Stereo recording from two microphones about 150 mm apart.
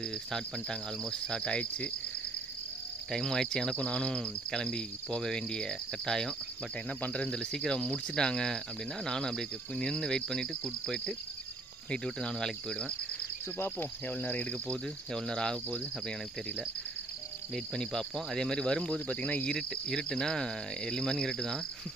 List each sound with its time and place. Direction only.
0.0 s speech: 5° left (ahead or behind)
3.1 s speech: 5° left (ahead or behind)
13.6 s speech: 15° left (ahead or behind)
17.6 s speech: 5° left (ahead or behind)